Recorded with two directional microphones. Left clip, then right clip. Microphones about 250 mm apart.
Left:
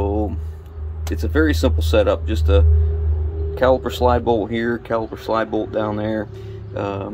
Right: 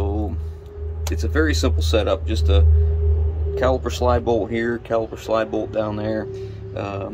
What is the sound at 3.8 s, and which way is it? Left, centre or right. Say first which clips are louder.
Speech: left 3 dB; left.